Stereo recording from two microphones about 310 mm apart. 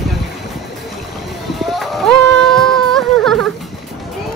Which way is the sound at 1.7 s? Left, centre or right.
Centre.